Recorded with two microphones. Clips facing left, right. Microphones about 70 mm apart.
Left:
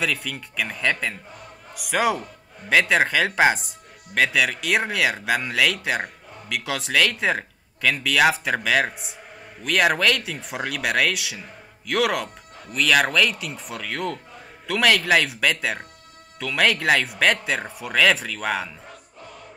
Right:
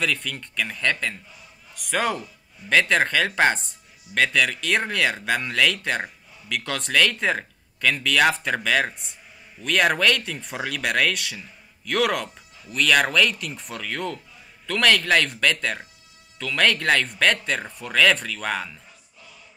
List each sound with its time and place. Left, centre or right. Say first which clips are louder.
0.0 s speech: even; centre
1.3 s a sound: left 7 dB; left
1.8 s speech: left 3 dB; centre
2.1 s a man's voice: left 2 dB; left
2.7 s speech: left 1 dB; centre
6.0 s a sound: left 3 dB; left
6.5 s speech: even; centre